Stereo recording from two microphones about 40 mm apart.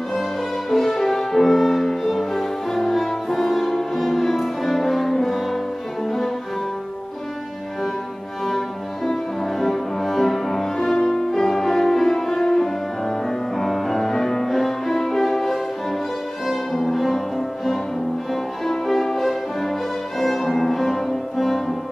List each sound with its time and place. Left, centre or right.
0.1 s music: centre
6.0 s cello: centre
8.5 s music: centre